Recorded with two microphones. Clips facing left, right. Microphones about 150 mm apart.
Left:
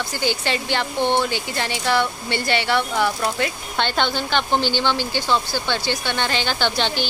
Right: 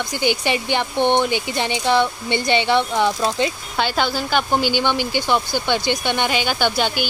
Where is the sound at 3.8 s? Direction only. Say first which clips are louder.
Right 1 dB; 5° right (ahead or behind).